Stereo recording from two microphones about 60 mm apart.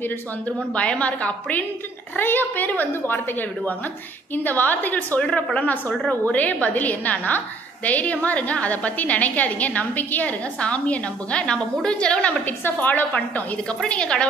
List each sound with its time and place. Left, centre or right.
0.7 s a woman's voice: left